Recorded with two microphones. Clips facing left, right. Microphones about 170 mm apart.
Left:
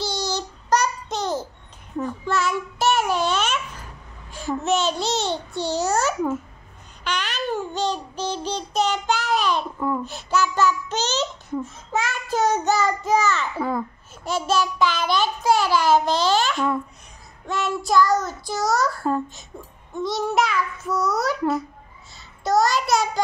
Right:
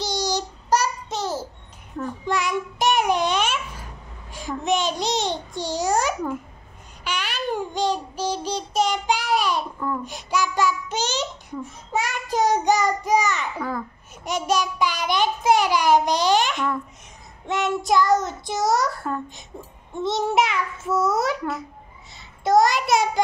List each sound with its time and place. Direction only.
0.0 s child singing: 15° right (ahead or behind)
2.2 s babbling: 15° right (ahead or behind)
4.3 s a sound: 15° right (ahead or behind)
4.6 s babbling: 15° right (ahead or behind)
7.1 s child singing: 10° right (ahead or behind)
13.6 s a child's voice: 25° left (ahead or behind)
14.2 s a sound: 15° right (ahead or behind)
17.5 s child singing: 20° right (ahead or behind)
22.6 s child singing: 20° right (ahead or behind)